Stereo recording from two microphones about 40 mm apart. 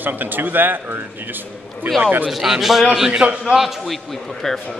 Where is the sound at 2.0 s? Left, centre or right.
Right.